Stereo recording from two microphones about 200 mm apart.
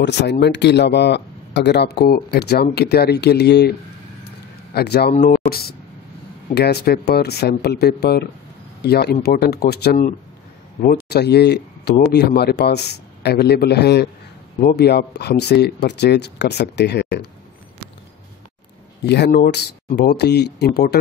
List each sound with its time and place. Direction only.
0.0 s speech: 60° left (ahead or behind)
4.7 s speech: 55° left (ahead or behind)
19.0 s speech: 55° left (ahead or behind)